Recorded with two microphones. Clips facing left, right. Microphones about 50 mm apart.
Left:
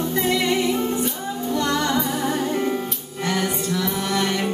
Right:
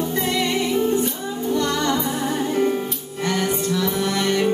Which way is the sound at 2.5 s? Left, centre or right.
Centre.